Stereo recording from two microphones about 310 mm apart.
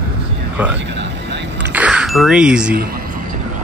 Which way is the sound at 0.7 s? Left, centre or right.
Right.